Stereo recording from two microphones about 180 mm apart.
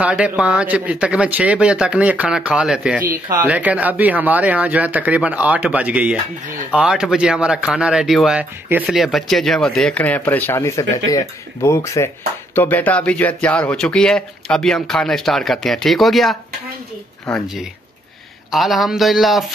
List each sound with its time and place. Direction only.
0.0 s speech: 5° right (ahead or behind)